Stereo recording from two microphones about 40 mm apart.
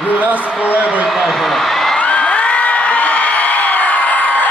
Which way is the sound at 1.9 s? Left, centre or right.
Left.